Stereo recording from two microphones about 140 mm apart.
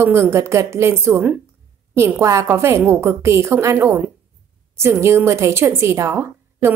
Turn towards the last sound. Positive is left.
turn(degrees=-20)  # may be behind; listen again after turning